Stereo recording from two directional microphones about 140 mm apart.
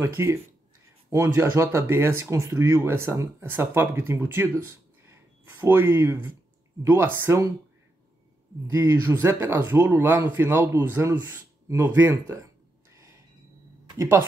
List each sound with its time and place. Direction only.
0.0 s a man's voice: 20° right (ahead or behind)
8.7 s a man's voice: 20° right (ahead or behind)
12.9 s a sound: 20° right (ahead or behind)
13.8 s speech: 20° right (ahead or behind)